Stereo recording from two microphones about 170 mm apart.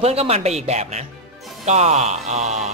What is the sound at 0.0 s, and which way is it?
A man's voice, 35° right (ahead or behind).